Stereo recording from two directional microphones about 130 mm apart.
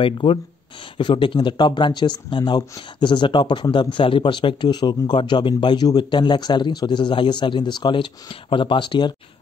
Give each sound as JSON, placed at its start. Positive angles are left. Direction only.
{"t": 0.0, "sound": "speech", "side_deg": 45}